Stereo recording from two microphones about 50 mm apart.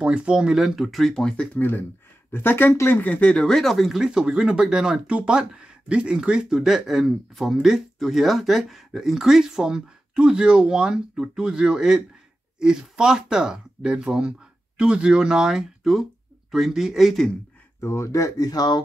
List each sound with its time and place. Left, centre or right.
0.0 s speech: centre
0.5 s speech: centre
1.2 s speech: left
1.6 s speech: left
2.9 s speech: left
3.4 s speech: centre
3.8 s speech: centre
4.1 s speech: centre
6.6 s speech: centre
17.7 s speech: left